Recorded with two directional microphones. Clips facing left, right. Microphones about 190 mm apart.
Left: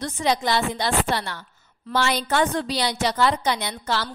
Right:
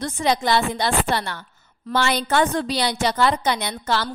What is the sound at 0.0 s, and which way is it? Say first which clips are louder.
Speech: right 2 dB; 55° right (ahead or behind).